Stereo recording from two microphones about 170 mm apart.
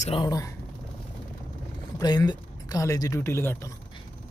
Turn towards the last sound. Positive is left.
turn(degrees=15)  # may be behind; listen again after turning